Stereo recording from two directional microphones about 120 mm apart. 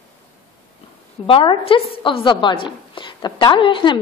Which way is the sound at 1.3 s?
50° left (ahead or behind).